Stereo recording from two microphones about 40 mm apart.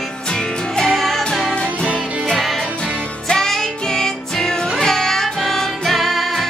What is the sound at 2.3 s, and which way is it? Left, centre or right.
Music, centre.